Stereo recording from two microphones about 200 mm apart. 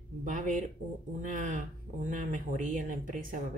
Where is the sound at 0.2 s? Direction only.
40° right (ahead or behind).